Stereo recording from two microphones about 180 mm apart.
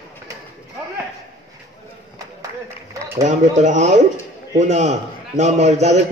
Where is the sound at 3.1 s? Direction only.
40° right (ahead or behind).